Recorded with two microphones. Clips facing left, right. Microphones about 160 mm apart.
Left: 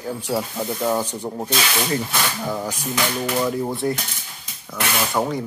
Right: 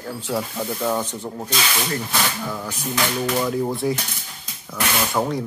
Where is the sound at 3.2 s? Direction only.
Centre (ahead or behind).